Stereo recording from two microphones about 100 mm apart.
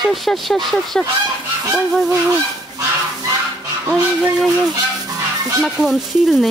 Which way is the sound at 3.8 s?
10° right (ahead or behind).